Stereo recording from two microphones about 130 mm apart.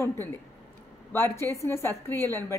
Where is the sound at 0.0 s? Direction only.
20° left (ahead or behind).